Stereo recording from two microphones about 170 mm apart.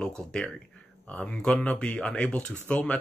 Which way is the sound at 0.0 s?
5° left (ahead or behind).